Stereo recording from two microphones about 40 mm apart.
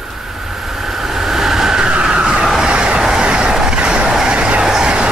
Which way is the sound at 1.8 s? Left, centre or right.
Right.